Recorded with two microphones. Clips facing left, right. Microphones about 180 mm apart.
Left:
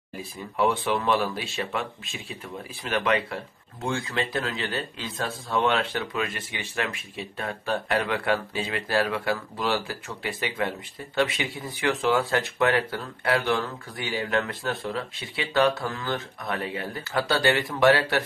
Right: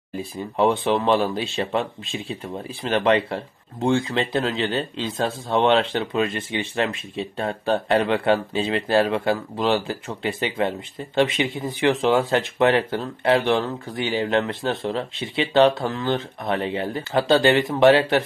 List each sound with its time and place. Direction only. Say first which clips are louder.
0.2 s speech: right 4 dB; 30° right (ahead or behind)